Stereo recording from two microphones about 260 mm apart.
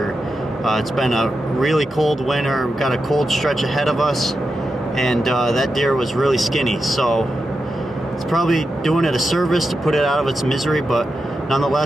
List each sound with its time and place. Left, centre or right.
0.7 s speech: centre
8.3 s speech: centre